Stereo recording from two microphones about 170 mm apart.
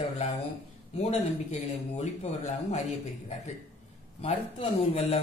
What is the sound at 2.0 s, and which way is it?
Speech, 45° left (ahead or behind).